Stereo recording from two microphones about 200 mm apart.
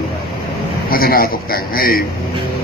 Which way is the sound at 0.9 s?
50° left (ahead or behind).